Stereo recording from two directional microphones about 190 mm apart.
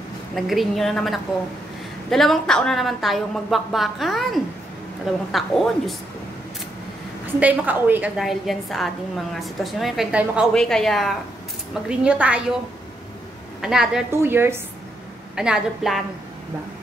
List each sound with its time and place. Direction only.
0.3 s a woman's voice: centre (ahead or behind)
7.3 s a woman's voice: 10° right (ahead or behind)
13.6 s a woman's voice: 5° right (ahead or behind)